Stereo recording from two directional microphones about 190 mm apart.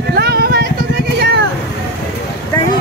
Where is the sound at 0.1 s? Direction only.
55° right (ahead or behind).